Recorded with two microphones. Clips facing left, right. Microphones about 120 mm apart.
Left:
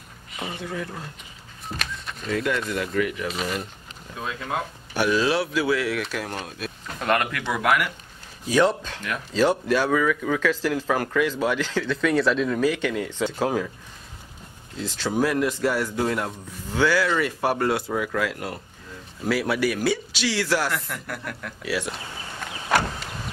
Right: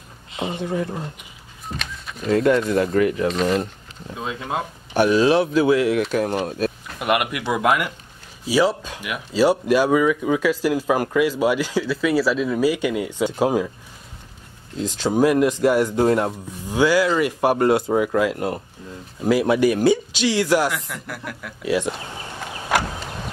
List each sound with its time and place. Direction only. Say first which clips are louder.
0.4 s speech: right 7 dB; 20° right (ahead or behind)
1.7 s a sound: right 1 dB; centre (ahead or behind)
2.2 s speech: right 8 dB; 35° right (ahead or behind)
4.1 s speech: right 3 dB; 20° right (ahead or behind)
8.5 s speech: right 1 dB; 5° right (ahead or behind)
14.8 s speech: right 5 dB; 15° right (ahead or behind)
16.0 s speech: right 7 dB; 30° right (ahead or behind)
16.6 s speech: right 4 dB; 15° right (ahead or behind)
20.7 s speech: even; 5° right (ahead or behind)
21.6 s speech: right 7 dB; 20° right (ahead or behind)